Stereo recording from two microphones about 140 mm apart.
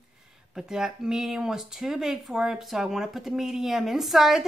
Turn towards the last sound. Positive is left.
turn(degrees=0)  # may be behind; listen again after turning